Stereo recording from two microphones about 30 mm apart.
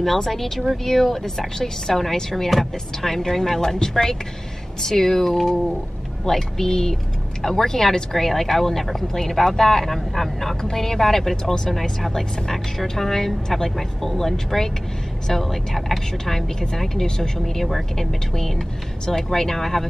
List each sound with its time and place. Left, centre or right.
0.0 s speech: centre